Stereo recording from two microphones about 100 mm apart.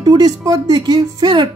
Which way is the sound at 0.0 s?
40° right (ahead or behind).